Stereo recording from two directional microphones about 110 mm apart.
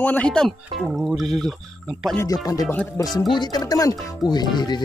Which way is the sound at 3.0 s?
20° left (ahead or behind).